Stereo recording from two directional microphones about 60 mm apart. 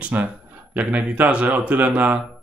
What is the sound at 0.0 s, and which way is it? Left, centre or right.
Speech, right.